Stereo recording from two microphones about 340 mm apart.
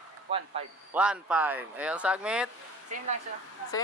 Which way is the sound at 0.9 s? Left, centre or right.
Centre.